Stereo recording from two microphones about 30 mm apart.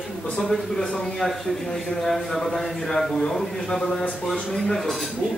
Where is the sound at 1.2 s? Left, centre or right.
Left.